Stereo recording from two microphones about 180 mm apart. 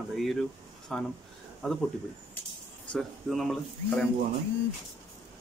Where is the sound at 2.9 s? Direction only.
Centre (ahead or behind).